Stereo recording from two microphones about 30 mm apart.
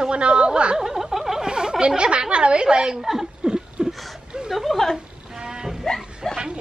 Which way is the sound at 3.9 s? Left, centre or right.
Centre.